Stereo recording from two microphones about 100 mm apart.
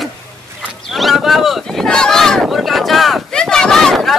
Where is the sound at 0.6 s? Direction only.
Centre (ahead or behind).